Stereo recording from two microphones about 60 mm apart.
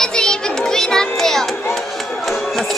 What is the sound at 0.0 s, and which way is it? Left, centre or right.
Music, centre.